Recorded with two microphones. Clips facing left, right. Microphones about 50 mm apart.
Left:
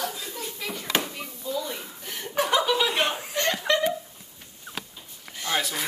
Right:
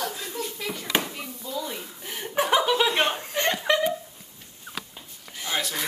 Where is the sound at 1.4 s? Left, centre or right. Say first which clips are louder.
Left 2 dB; centre.